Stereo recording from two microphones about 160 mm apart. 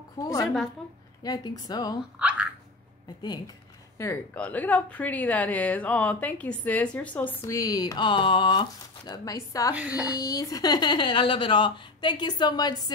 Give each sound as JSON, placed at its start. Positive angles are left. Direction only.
{"t": 0.2, "sound": "speech", "side_deg": 20}
{"t": 2.1, "sound": "a sound", "side_deg": -10}
{"t": 3.2, "sound": "speech", "side_deg": 25}
{"t": 9.8, "sound": "speech", "side_deg": -10}
{"t": 10.1, "sound": "speech", "side_deg": 20}